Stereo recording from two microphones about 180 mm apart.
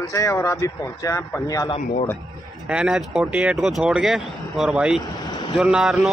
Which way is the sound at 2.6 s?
5° right (ahead or behind).